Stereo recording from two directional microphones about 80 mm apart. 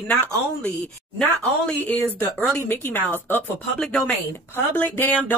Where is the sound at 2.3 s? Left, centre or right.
Left.